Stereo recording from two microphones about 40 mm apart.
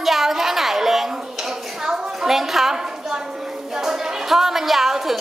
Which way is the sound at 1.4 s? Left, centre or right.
Centre.